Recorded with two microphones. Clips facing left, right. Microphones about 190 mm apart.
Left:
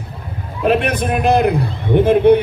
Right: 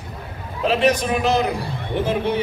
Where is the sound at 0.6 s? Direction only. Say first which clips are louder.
Left 2 dB; 55° left (ahead or behind).